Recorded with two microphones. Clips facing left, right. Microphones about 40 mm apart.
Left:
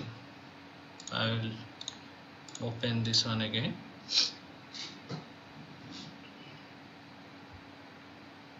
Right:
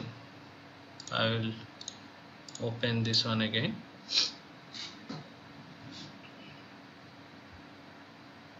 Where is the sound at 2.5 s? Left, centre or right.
Left.